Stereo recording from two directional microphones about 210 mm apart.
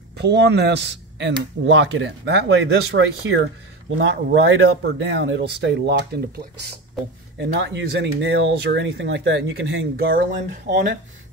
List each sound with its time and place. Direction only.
0.2 s speech: 55° right (ahead or behind)